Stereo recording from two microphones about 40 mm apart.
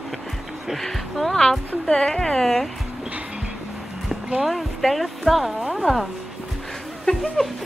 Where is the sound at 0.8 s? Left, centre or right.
Centre.